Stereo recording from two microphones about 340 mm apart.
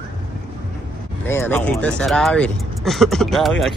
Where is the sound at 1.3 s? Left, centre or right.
Centre.